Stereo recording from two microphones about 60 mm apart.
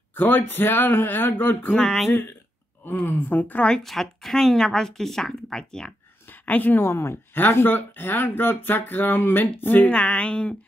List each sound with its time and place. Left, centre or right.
0.1 s speech: left
1.8 s speech: centre
3.1 s a woman's voice: left
3.8 s a woman's voice: centre
6.4 s speech: left
6.8 s speech: left
7.5 s speech: left
9.8 s a woman's voice: centre